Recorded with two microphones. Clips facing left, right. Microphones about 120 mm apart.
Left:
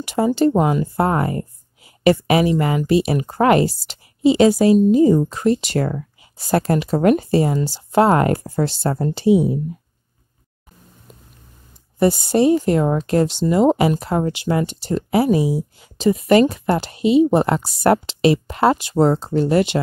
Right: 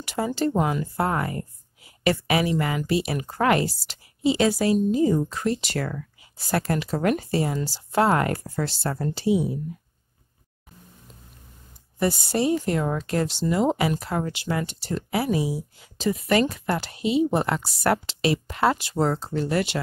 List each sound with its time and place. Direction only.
0.0 s speech: 20° left (ahead or behind)
12.4 s speech: 25° left (ahead or behind)